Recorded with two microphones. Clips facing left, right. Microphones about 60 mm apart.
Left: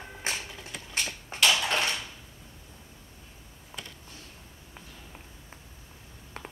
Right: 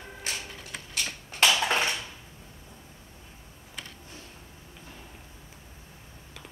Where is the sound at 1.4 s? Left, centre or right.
Right.